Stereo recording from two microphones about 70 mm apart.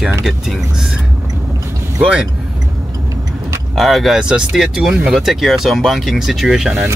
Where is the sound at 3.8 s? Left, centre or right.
Centre.